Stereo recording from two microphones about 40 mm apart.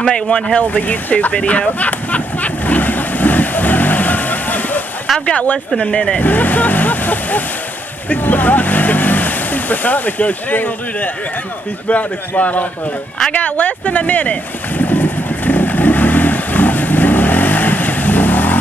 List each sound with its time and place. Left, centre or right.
0.0 s speech: centre
0.6 s speech: left
1.8 s vehicle: left
5.2 s speech: left
6.1 s vehicle: left
8.1 s speech: left
13.3 s boat: left